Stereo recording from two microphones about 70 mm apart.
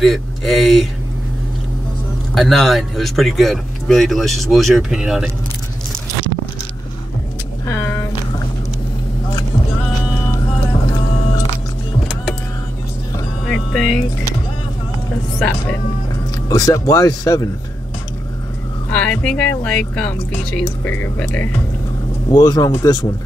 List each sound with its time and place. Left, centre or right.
0.0 s speech: centre
2.3 s speech: centre
7.6 s speech: left
13.5 s speech: centre
16.4 s speech: left
18.9 s speech: centre
20.8 s speech: left
22.4 s speech: left